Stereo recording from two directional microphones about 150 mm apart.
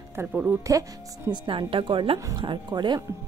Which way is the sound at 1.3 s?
35° right (ahead or behind).